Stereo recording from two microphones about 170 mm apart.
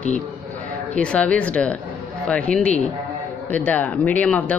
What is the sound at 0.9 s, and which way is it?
Speech, 5° left (ahead or behind).